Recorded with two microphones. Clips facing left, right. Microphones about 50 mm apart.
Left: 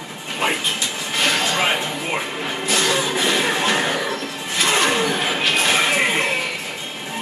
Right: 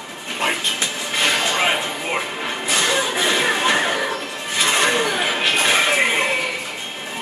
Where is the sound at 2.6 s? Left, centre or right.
Centre.